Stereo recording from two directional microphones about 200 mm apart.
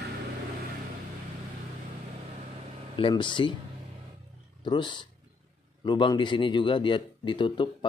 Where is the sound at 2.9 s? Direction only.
25° left (ahead or behind).